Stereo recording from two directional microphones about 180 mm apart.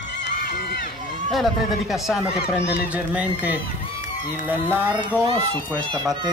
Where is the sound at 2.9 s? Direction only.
5° right (ahead or behind).